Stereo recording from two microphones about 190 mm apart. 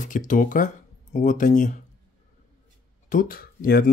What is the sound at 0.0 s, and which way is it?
Speech, 40° left (ahead or behind).